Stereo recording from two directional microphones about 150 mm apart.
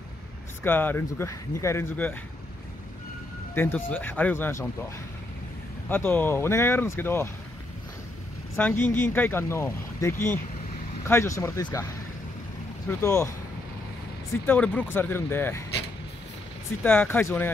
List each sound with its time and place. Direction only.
0.7 s speech: 15° left (ahead or behind)
3.5 s speech: 15° left (ahead or behind)
5.9 s speech: 15° left (ahead or behind)
8.5 s speech: 10° left (ahead or behind)
13.0 s speech: 20° left (ahead or behind)
14.3 s speech: 15° left (ahead or behind)
16.8 s speech: 15° left (ahead or behind)